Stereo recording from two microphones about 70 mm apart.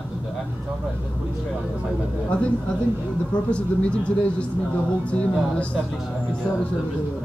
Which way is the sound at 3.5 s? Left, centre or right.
Centre.